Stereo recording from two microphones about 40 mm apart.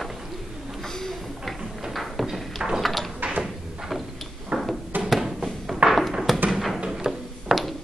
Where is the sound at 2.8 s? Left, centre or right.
Centre.